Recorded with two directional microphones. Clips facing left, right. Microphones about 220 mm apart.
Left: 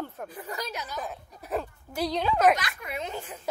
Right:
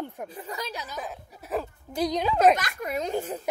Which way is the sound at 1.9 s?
15° right (ahead or behind).